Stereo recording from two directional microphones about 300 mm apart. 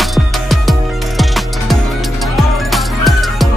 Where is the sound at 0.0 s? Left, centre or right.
Centre.